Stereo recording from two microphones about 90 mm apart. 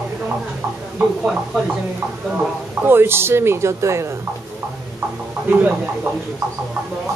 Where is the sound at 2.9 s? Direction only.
25° right (ahead or behind).